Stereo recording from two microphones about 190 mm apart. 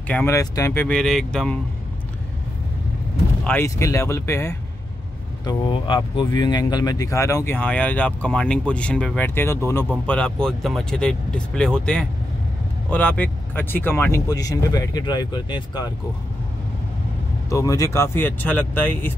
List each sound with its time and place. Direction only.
0.1 s speech: 15° left (ahead or behind)
3.4 s speech: 15° left (ahead or behind)
17.5 s speech: 15° left (ahead or behind)